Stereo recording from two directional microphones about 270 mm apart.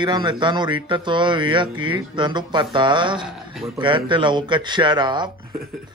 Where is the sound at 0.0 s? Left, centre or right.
Centre.